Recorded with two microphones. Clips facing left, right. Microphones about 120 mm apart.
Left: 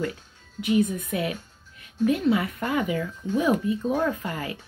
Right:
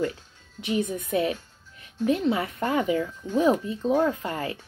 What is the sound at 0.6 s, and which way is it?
A woman's voice, 25° right (ahead or behind).